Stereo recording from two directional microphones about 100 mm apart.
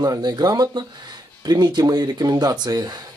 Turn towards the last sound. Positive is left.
turn(degrees=-40)  # may be behind; listen again after turning